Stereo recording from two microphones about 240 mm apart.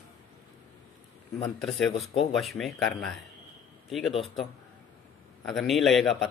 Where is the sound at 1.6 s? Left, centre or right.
Centre.